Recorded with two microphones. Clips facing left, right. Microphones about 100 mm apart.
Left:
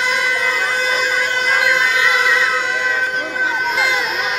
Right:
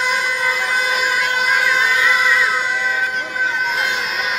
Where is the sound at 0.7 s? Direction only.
10° right (ahead or behind).